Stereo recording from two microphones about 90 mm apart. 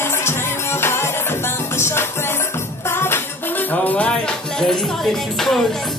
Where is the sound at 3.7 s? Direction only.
15° left (ahead or behind).